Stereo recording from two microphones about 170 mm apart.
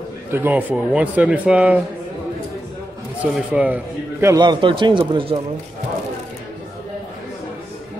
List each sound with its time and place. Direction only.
0.3 s speech: 10° right (ahead or behind)
3.3 s speech: 10° right (ahead or behind)
4.4 s a man's voice: 25° right (ahead or behind)